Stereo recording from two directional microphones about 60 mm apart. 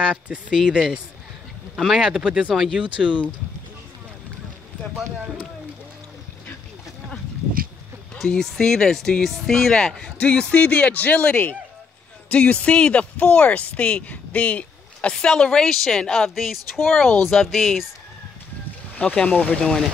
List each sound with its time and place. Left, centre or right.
0.0 s speech: centre
8.1 s speech: centre
10.2 s speech: left; by 17.8 s centre
19.0 s speech: left
19.4 s speech: centre